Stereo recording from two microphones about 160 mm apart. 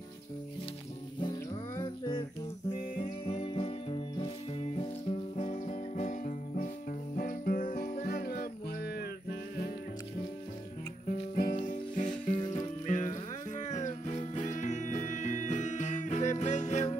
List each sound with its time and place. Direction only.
1.8 s music: 30° left (ahead or behind); by 9.7 s 80° left
11.3 s music: 60° left (ahead or behind)